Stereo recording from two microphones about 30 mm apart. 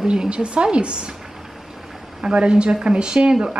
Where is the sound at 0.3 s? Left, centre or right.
Right.